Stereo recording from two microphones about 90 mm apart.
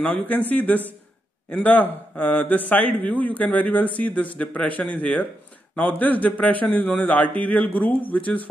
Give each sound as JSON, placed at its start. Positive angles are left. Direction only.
{"t": 0.0, "sound": "a man's voice", "side_deg": 20}